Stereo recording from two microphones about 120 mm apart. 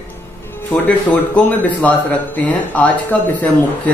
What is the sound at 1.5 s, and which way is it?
Speech, 15° left (ahead or behind).